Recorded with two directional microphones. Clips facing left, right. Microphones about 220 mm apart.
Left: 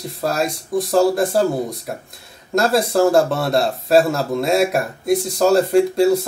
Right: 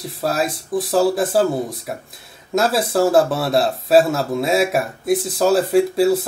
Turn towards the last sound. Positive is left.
turn(degrees=0)  # may be behind; listen again after turning